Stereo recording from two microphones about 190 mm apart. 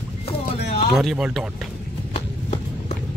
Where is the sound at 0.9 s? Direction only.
5° right (ahead or behind).